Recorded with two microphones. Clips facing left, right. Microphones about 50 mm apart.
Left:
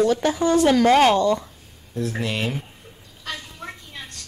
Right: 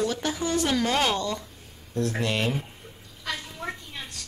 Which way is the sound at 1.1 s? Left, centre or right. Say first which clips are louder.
Left 10 dB; left.